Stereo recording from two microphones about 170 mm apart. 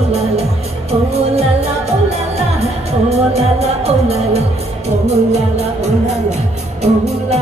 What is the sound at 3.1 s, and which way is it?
Music, 40° right (ahead or behind).